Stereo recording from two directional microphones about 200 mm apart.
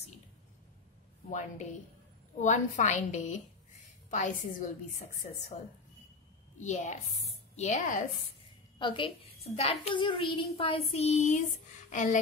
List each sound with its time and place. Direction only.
1.3 s a woman's voice: 35° left (ahead or behind)
6.6 s a woman's voice: 35° left (ahead or behind)
8.7 s a child's voice: 25° left (ahead or behind)